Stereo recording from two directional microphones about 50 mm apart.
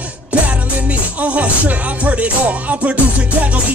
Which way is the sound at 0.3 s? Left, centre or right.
Right.